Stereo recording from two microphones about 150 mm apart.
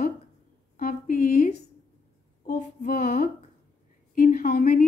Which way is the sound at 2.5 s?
55° left (ahead or behind).